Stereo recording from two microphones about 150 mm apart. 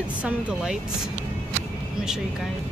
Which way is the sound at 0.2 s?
5° right (ahead or behind).